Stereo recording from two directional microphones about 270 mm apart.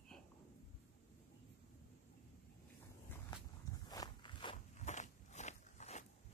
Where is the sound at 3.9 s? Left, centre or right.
Centre.